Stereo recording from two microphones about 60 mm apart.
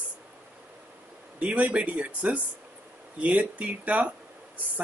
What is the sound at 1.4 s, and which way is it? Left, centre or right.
Speech, right.